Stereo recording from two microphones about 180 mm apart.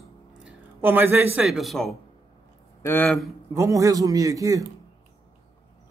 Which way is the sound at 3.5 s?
15° right (ahead or behind).